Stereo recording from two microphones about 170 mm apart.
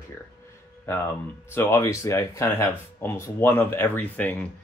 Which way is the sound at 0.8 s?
15° left (ahead or behind).